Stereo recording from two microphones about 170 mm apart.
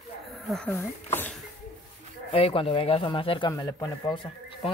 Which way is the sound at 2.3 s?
35° left (ahead or behind).